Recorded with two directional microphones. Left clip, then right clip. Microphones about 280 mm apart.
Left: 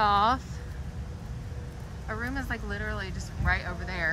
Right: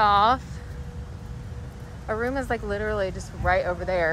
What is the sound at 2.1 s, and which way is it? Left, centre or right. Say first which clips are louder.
A woman's voice: right 8 dB; centre.